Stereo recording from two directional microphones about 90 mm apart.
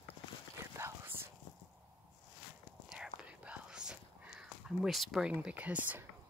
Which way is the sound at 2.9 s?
10° right (ahead or behind).